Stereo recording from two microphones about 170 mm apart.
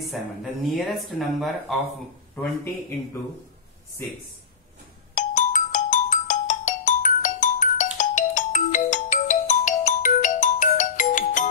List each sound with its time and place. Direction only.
0.1 s speech: centre (ahead or behind)
5.1 s ringtone: 50° left (ahead or behind)